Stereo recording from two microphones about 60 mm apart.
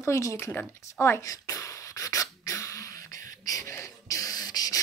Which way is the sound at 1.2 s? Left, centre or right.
Left.